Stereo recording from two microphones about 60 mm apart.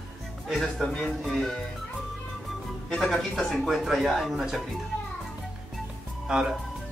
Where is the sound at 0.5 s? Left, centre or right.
Centre.